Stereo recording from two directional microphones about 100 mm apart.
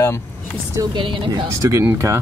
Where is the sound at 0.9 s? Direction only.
55° right (ahead or behind).